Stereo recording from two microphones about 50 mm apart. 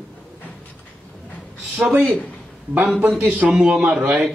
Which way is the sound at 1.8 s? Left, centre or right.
Centre.